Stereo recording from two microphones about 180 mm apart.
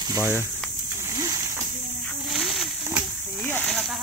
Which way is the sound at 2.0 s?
Centre (ahead or behind).